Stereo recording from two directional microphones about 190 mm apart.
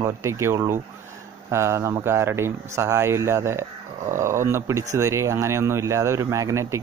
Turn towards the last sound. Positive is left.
turn(degrees=-15)  # may be behind; listen again after turning